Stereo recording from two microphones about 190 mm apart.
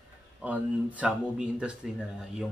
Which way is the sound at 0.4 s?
10° right (ahead or behind).